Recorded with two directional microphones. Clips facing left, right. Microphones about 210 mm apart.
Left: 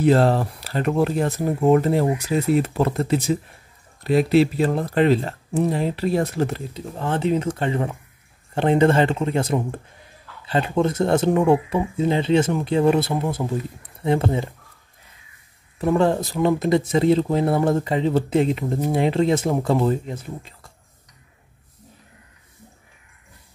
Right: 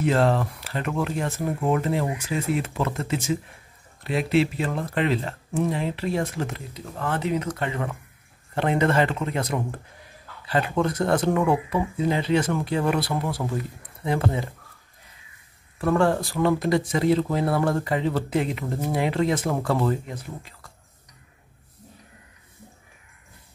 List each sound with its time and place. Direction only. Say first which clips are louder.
0.0 s speech: left 4 dB; 35° left (ahead or behind)
15.8 s speech: left 2 dB; 20° left (ahead or behind)